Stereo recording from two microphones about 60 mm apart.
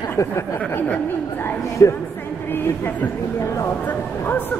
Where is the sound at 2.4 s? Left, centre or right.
Left.